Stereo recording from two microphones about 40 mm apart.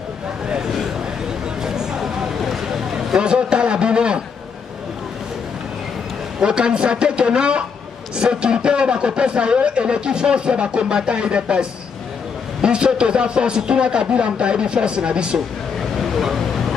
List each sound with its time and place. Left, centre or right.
1.6 s a sound: centre
3.2 s a man's voice: right
6.4 s a man's voice: right
12.6 s a man's voice: right
16.2 s vehicle: centre